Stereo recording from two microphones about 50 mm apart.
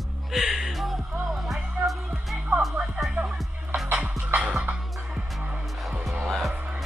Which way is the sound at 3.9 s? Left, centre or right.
Right.